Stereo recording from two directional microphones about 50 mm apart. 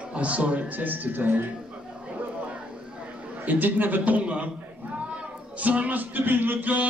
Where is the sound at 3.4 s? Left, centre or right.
Right.